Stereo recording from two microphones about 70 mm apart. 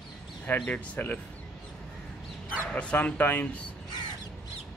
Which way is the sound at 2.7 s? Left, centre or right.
Centre.